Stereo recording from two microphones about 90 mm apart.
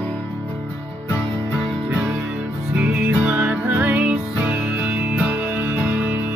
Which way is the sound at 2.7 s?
15° right (ahead or behind).